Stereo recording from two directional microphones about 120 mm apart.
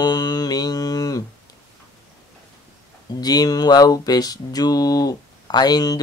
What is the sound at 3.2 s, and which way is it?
Mantra, 35° left (ahead or behind).